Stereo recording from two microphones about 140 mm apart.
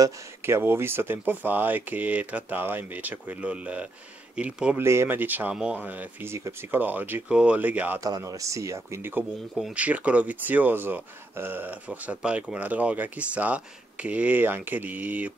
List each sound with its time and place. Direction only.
0.0 s speech: 20° right (ahead or behind)
8.0 s speech: 25° right (ahead or behind)